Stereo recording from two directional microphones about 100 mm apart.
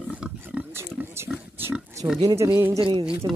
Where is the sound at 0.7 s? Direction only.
25° right (ahead or behind).